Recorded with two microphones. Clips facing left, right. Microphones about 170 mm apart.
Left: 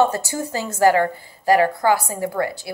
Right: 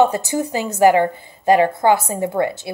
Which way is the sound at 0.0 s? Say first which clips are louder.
Right 3 dB; 20° right (ahead or behind).